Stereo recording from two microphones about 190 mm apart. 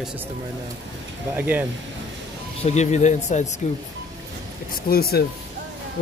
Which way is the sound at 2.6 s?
35° left (ahead or behind).